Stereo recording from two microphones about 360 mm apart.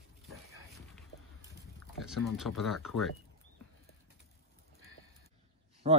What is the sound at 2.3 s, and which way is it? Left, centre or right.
Speech, centre.